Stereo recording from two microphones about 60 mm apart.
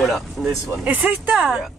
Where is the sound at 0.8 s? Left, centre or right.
Right.